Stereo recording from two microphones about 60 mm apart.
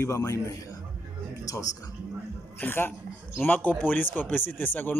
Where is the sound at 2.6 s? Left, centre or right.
Left.